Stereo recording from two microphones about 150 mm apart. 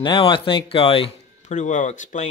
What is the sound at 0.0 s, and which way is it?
Speech, 30° left (ahead or behind).